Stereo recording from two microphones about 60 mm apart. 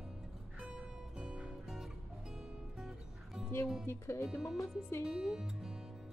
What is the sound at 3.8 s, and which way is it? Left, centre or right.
Speech, left.